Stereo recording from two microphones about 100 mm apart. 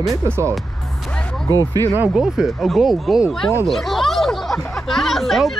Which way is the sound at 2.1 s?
5° right (ahead or behind).